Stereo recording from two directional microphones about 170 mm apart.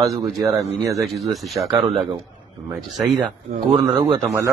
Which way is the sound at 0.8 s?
Centre (ahead or behind).